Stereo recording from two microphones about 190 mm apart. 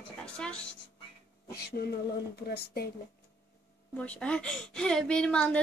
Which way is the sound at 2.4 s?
55° left (ahead or behind).